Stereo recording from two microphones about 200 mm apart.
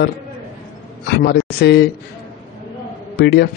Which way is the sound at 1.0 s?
55° left (ahead or behind).